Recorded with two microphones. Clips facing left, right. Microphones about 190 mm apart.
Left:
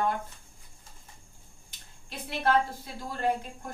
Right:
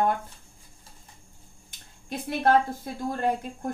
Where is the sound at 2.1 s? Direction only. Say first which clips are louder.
Right 5 dB; 50° right (ahead or behind).